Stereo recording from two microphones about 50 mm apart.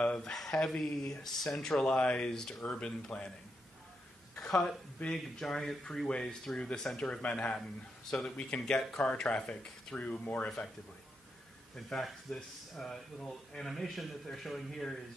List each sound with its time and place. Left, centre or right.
0.2 s speech: centre
4.4 s speech: centre
11.7 s speech: centre